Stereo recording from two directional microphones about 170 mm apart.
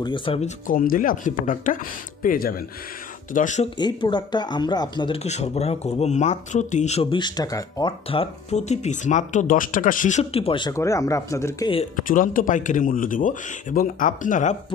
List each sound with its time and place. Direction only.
0.0 s speech: 30° left (ahead or behind)
0.7 s speech: 55° left (ahead or behind)
3.3 s speech: 50° left (ahead or behind)
3.7 s speech: 25° left (ahead or behind)
8.1 s speech: 35° left (ahead or behind)
10.7 s speech: 20° left (ahead or behind)
12.1 s speech: 50° left (ahead or behind)